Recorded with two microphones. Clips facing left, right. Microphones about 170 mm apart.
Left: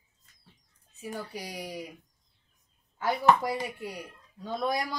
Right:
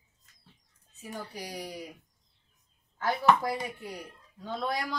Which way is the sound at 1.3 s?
10° left (ahead or behind).